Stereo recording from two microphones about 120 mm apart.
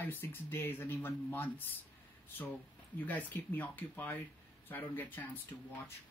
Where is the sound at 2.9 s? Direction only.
15° left (ahead or behind).